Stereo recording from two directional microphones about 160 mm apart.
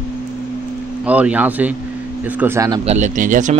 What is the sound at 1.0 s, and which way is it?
Speech, 10° right (ahead or behind).